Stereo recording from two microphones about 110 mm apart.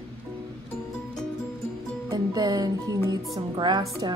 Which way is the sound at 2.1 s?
35° right (ahead or behind).